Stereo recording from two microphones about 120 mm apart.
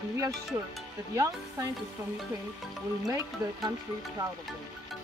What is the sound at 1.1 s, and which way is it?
Speech, 25° right (ahead or behind).